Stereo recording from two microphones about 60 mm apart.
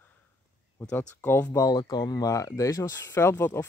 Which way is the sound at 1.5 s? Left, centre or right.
Left.